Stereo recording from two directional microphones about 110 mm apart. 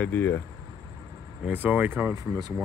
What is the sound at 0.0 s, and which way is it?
Speech, 15° left (ahead or behind).